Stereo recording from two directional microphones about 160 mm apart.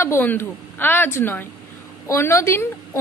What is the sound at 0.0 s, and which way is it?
A woman's voice, 15° left (ahead or behind).